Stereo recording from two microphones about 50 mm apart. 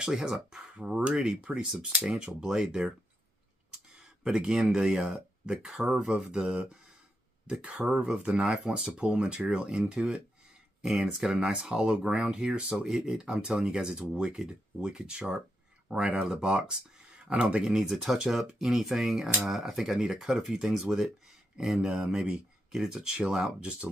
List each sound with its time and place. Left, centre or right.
0.0 s speech: centre
2.4 s speech: centre
4.0 s a sound: centre
4.7 s speech: centre
6.0 s speech: right